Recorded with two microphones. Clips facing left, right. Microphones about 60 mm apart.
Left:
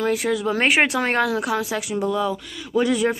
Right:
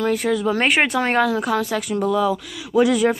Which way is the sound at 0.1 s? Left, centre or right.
Centre.